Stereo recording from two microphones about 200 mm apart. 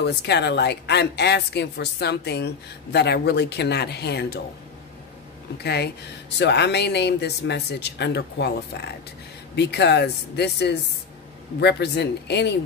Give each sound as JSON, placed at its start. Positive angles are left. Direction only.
{"t": 0.0, "sound": "a woman's voice", "side_deg": 55}
{"t": 5.6, "sound": "a woman's voice", "side_deg": 55}